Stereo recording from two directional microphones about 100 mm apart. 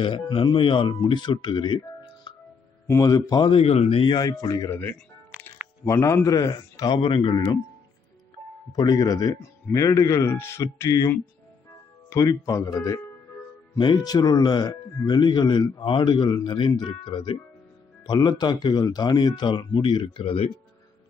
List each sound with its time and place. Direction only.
0.4 s speech: 60° left (ahead or behind)
3.0 s a man's voice: 40° left (ahead or behind)
3.5 s speech: 85° left
4.1 s a man's voice: 40° left (ahead or behind)
4.6 s a man's voice: 20° left (ahead or behind); by 7.0 s 40° left (ahead or behind)
7.0 s speech: 60° left (ahead or behind)
8.7 s a man's voice: 40° left (ahead or behind)
9.3 s speech: 30° left (ahead or behind); by 20.3 s 55° left (ahead or behind)